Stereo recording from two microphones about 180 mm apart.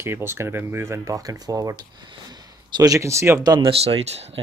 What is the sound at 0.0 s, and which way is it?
Speech, 15° right (ahead or behind).